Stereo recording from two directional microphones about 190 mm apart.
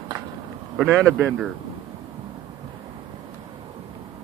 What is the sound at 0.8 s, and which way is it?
Speech, 5° left (ahead or behind).